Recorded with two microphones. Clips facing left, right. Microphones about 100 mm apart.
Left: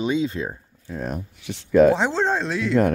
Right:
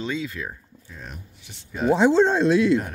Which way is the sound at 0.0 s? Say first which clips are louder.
Left 6 dB; 20° left (ahead or behind).